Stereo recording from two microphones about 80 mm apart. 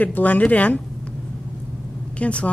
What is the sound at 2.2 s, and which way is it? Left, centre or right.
Speech, centre.